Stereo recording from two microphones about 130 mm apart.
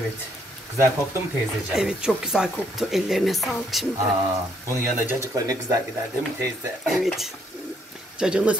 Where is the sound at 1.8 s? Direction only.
5° right (ahead or behind).